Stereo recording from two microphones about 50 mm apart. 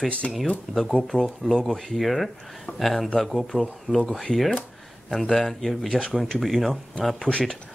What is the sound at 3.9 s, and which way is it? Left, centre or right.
Speech, left.